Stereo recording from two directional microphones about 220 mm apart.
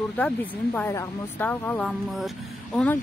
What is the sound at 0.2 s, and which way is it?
Speech, 5° left (ahead or behind).